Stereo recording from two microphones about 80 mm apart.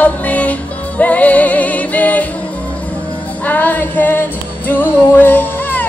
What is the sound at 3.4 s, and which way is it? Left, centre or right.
Music, left.